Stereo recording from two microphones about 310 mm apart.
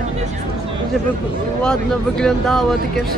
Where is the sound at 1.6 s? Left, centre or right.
Centre.